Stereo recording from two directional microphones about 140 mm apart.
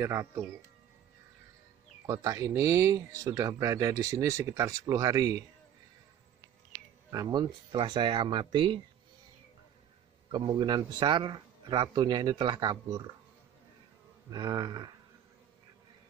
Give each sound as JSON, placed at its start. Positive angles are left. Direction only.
{"t": 0.0, "sound": "speech", "side_deg": -20}
{"t": 2.0, "sound": "speech", "side_deg": -25}
{"t": 7.1, "sound": "speech", "side_deg": -30}
{"t": 10.3, "sound": "speech", "side_deg": -40}
{"t": 14.3, "sound": "speech", "side_deg": -35}